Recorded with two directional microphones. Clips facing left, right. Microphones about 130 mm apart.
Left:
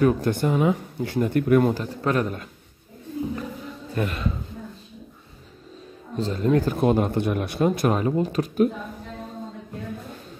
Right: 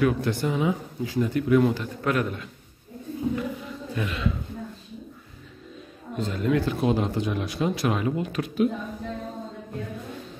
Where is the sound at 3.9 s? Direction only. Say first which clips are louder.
Left 2 dB; 45° left (ahead or behind).